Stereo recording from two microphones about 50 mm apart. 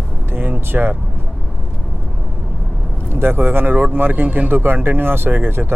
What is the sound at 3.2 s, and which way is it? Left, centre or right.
Speech, right.